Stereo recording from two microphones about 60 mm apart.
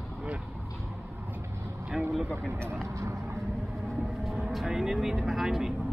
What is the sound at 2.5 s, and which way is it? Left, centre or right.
Speech, right.